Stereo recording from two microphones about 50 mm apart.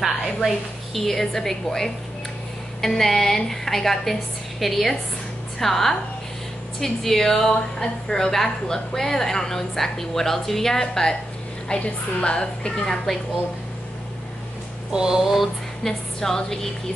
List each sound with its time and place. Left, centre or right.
0.9 s a woman's voice: centre
11.7 s a woman's voice: left
14.9 s a sound: centre
15.3 s a woman's voice: centre